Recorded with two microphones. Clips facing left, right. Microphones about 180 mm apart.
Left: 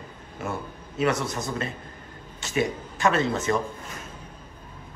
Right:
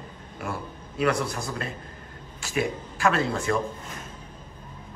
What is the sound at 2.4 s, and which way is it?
Speech, centre (ahead or behind).